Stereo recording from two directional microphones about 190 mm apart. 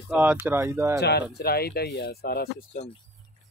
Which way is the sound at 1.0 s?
60° left (ahead or behind).